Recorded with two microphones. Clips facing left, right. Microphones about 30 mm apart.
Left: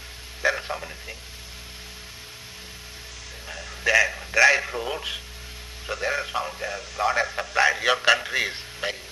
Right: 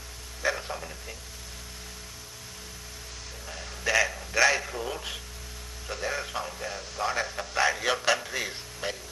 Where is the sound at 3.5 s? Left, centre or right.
Centre.